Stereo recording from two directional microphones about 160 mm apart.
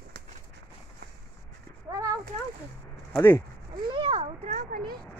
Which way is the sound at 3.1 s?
10° left (ahead or behind).